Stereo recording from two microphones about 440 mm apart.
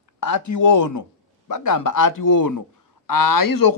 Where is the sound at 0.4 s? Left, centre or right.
Left.